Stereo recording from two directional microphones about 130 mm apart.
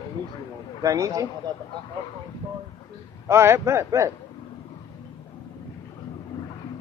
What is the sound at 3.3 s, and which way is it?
Speech, 20° right (ahead or behind).